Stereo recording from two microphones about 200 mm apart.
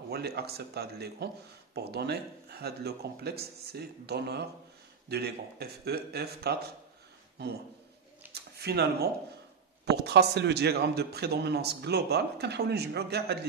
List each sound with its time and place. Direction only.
0.1 s a man's voice: 55° right (ahead or behind)